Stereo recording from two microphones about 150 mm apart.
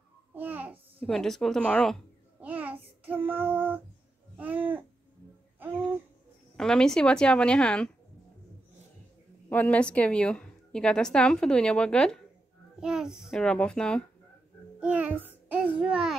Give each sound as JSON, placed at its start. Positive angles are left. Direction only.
{"t": 0.3, "sound": "babbling", "side_deg": -10}
{"t": 1.0, "sound": "speech", "side_deg": 5}
{"t": 2.4, "sound": "a sound", "side_deg": -10}
{"t": 3.3, "sound": "child singing", "side_deg": -10}
{"t": 4.4, "sound": "babbling", "side_deg": -10}
{"t": 6.5, "sound": "speech", "side_deg": 5}
{"t": 9.5, "sound": "a woman's voice", "side_deg": 10}
{"t": 12.8, "sound": "speech", "side_deg": -5}
{"t": 14.8, "sound": "child singing", "side_deg": -10}
{"t": 15.4, "sound": "a child's voice", "side_deg": -10}